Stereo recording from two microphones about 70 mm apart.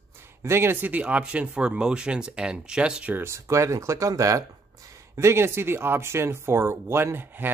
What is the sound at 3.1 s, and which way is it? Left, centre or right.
Speech, right.